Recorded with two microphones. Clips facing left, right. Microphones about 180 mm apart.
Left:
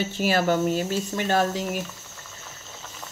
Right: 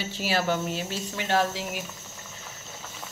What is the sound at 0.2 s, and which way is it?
Speech, 50° left (ahead or behind).